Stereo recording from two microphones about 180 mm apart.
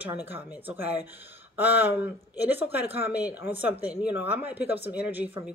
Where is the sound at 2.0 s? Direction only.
10° right (ahead or behind).